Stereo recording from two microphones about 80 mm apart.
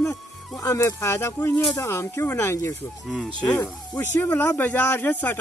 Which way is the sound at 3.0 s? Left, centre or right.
Centre.